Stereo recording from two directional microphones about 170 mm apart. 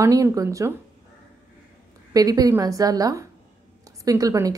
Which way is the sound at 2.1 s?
20° right (ahead or behind).